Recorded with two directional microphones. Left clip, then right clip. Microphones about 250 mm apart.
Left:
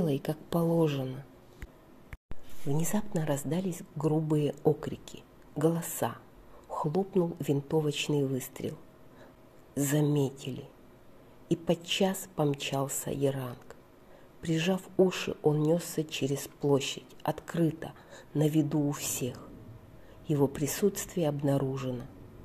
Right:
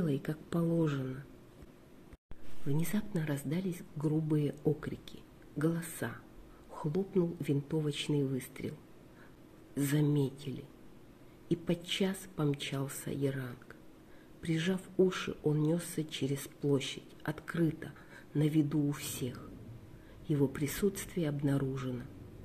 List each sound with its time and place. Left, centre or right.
0.0 s speech: centre
2.8 s speech: centre
9.8 s speech: centre